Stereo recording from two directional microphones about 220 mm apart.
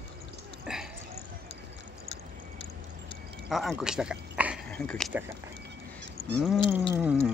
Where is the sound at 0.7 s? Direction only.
5° right (ahead or behind).